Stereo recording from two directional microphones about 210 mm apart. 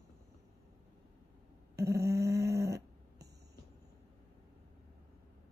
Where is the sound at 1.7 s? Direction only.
15° right (ahead or behind).